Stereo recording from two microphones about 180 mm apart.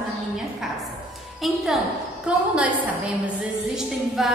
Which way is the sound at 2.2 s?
5° right (ahead or behind).